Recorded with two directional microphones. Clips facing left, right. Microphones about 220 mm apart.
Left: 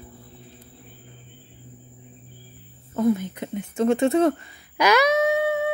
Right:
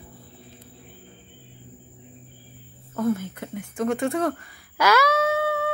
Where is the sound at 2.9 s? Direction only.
15° left (ahead or behind).